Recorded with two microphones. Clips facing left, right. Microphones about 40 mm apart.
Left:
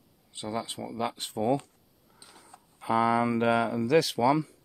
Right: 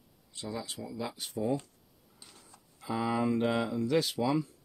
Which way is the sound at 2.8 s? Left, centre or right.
Left.